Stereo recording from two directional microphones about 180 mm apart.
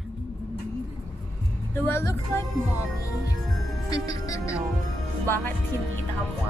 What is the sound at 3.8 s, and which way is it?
Music, 20° left (ahead or behind).